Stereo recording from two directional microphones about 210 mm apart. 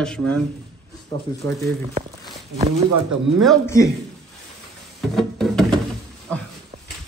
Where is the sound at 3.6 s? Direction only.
15° left (ahead or behind).